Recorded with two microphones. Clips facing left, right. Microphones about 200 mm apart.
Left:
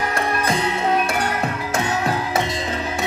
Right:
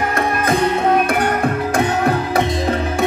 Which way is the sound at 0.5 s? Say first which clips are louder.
Right 7 dB; 55° right (ahead or behind).